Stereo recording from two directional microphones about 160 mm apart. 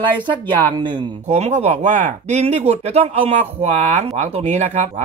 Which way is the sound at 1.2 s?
45° right (ahead or behind).